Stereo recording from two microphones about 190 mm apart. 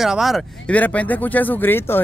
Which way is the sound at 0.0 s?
Centre (ahead or behind).